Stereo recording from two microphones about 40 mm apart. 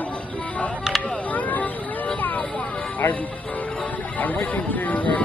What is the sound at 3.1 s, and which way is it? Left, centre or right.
Speech, left.